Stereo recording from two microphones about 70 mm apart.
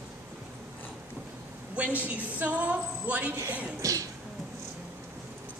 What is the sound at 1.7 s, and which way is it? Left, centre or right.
A woman's voice, right.